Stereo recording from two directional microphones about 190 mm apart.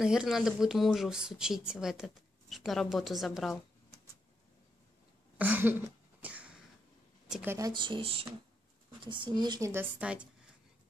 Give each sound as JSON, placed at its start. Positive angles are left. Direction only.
{"t": 0.0, "sound": "speech", "side_deg": -5}
{"t": 5.4, "sound": "a sound", "side_deg": -10}
{"t": 7.2, "sound": "a woman's voice", "side_deg": -5}
{"t": 7.5, "sound": "a woman's voice", "side_deg": -20}